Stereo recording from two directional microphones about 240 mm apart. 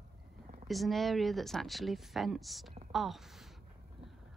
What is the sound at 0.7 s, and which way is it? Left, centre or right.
Speech, centre.